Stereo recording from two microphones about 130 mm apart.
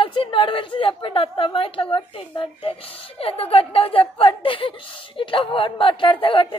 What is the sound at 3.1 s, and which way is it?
Speech, 50° left (ahead or behind).